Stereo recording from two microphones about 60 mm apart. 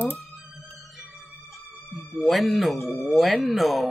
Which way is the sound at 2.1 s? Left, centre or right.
Centre.